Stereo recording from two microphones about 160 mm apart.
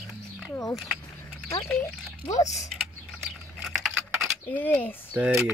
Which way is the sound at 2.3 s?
20° left (ahead or behind).